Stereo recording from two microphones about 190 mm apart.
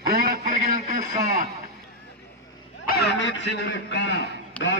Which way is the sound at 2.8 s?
60° left (ahead or behind).